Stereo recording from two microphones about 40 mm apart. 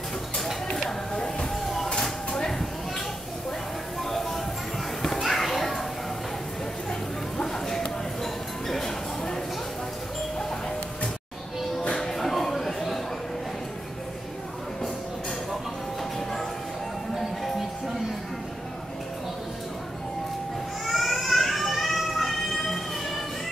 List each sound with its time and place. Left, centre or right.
1.1 s music: centre
2.0 s a sound: centre
4.0 s music: centre
5.0 s children playing: centre
6.9 s music: centre
11.9 s a sound: centre
16.0 s music: centre
20.8 s music: centre